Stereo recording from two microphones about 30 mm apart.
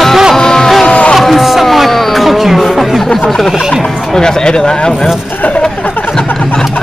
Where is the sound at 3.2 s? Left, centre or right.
Centre.